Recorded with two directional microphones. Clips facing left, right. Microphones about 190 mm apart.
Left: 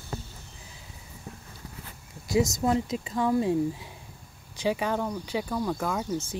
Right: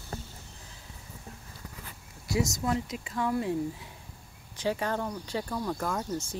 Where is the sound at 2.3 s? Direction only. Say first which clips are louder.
Left 5 dB; 25° left (ahead or behind); by 6.4 s 5° left (ahead or behind).